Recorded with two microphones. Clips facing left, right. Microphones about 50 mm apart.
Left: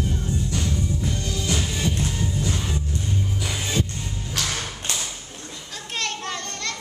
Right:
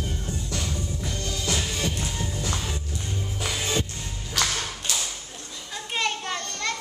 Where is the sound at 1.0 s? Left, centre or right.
Centre.